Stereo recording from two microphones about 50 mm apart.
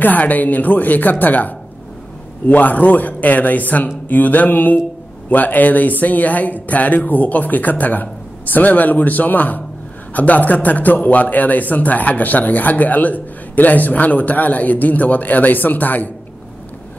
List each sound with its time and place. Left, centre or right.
0.0 s speech: left